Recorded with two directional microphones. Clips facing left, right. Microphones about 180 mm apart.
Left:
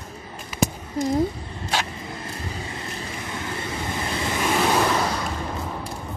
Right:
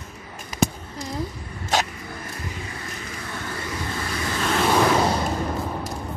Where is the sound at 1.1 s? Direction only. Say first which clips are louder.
Left 5 dB; 25° left (ahead or behind).